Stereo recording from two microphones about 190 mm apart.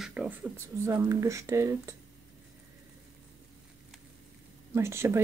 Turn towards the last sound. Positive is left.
turn(degrees=-15)  # may be behind; listen again after turning